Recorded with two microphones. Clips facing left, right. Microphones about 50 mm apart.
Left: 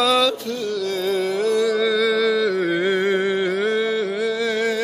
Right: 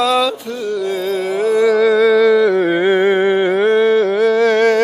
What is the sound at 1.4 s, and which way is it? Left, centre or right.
Music, centre.